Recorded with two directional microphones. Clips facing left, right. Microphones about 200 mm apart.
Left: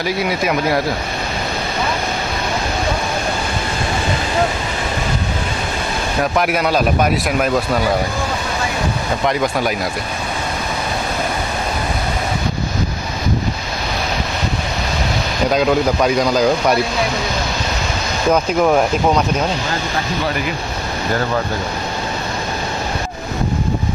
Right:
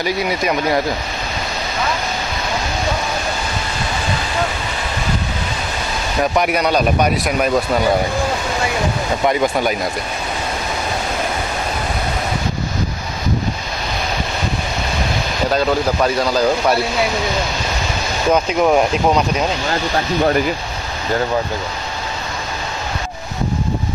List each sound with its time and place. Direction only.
0.0 s speech: centre (ahead or behind)
6.3 s speech: centre (ahead or behind)
9.2 s speech: 5° right (ahead or behind)
15.5 s speech: 5° left (ahead or behind)
16.3 s speech: 5° right (ahead or behind)
18.3 s speech: centre (ahead or behind)